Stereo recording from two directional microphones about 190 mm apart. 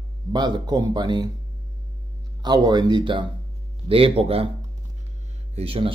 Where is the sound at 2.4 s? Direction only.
20° right (ahead or behind).